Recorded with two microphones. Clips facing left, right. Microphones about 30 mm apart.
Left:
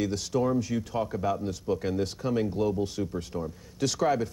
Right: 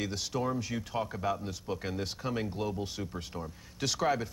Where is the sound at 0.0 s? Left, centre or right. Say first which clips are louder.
Left 6 dB; centre.